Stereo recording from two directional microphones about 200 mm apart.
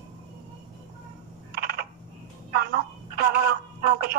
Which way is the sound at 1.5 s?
50° right (ahead or behind).